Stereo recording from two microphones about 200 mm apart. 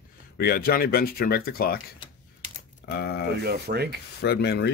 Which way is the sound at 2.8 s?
55° left (ahead or behind).